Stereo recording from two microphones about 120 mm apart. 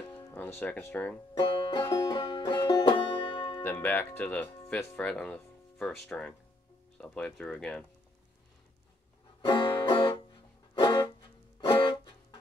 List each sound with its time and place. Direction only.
0.3 s speech: 15° left (ahead or behind)
1.5 s music: 40° left (ahead or behind)
3.6 s speech: 15° left (ahead or behind)
9.4 s music: 45° left (ahead or behind)